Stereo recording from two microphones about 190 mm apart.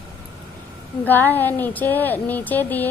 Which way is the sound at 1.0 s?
10° left (ahead or behind).